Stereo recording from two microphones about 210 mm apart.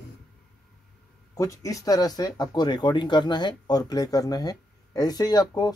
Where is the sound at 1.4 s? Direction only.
15° left (ahead or behind).